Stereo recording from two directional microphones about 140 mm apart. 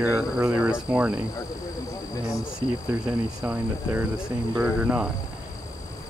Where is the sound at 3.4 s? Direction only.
10° right (ahead or behind).